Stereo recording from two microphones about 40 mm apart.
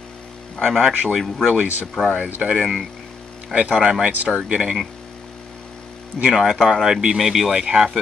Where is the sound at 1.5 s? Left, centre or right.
Right.